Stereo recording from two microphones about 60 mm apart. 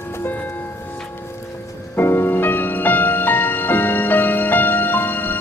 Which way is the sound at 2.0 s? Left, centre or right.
Left.